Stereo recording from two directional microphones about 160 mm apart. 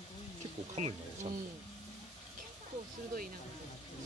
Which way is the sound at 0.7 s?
45° right (ahead or behind).